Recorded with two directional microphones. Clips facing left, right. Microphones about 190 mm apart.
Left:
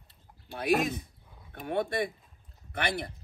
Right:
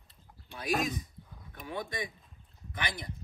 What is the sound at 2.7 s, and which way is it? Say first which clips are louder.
Speech: left 6 dB; 60° left (ahead or behind).